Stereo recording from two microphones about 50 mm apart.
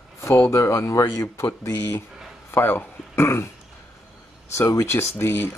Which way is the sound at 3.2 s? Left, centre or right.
Left.